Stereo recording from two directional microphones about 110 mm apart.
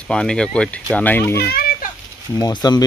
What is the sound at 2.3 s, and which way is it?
Speech, 35° left (ahead or behind).